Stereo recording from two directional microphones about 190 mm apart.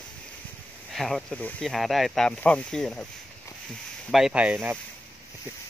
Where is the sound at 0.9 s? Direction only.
Centre (ahead or behind).